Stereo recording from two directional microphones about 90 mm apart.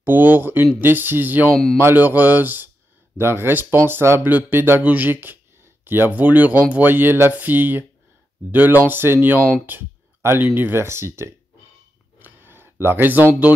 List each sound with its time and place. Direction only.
0.0 s speech: 20° right (ahead or behind)
12.2 s a sound: 20° right (ahead or behind)
12.8 s speech: 20° right (ahead or behind)